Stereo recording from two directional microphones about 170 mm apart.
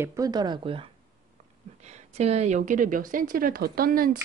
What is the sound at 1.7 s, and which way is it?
A woman's voice, 40° right (ahead or behind).